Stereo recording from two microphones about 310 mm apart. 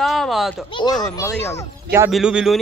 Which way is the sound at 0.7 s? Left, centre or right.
Centre.